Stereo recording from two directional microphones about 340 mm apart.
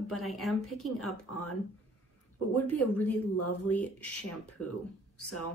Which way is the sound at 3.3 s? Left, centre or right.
Left.